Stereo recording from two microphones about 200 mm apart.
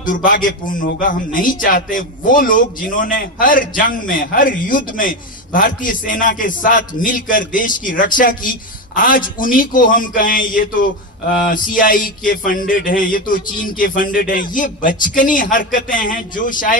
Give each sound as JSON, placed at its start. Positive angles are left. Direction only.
{"t": 0.0, "sound": "a man's voice", "side_deg": 40}